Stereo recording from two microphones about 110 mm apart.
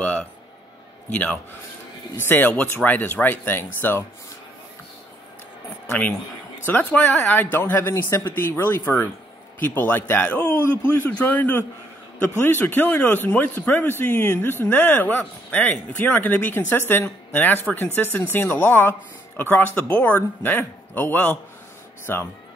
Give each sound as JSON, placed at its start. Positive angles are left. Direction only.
{"t": 0.0, "sound": "speech", "side_deg": 10}
{"t": 5.9, "sound": "speech", "side_deg": 15}